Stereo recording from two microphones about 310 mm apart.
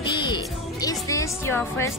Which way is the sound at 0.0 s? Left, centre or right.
Centre.